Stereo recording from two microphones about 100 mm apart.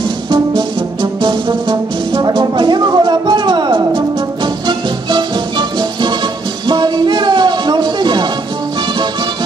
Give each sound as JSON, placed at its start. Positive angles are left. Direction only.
{"t": 1.2, "sound": "music", "side_deg": -50}